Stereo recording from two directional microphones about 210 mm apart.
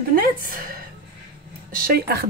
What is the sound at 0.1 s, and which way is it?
Speech, 40° right (ahead or behind).